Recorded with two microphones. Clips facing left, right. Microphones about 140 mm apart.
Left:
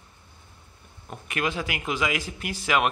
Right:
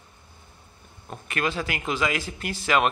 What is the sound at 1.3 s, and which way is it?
A man's voice, 15° left (ahead or behind).